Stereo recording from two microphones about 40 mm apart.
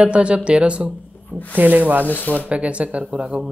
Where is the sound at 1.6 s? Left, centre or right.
Right.